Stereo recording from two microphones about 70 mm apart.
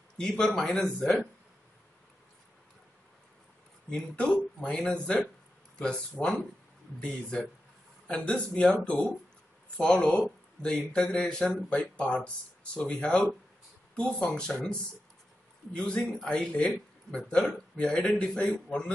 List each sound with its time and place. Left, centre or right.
0.2 s speech: centre
4.6 s speech: centre